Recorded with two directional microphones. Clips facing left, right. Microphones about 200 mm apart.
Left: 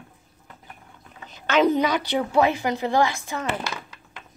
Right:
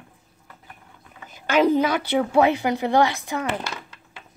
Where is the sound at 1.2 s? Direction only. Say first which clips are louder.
Right 1 dB; 10° right (ahead or behind).